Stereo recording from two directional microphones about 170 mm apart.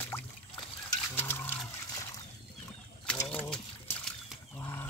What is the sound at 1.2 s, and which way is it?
Wild animals, 10° left (ahead or behind).